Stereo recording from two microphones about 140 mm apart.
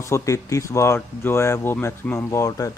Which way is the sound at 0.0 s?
20° left (ahead or behind).